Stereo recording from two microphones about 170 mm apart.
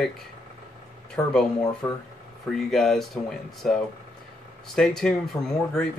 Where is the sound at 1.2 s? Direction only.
10° left (ahead or behind).